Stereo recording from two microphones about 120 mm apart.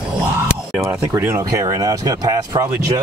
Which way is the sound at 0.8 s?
20° right (ahead or behind).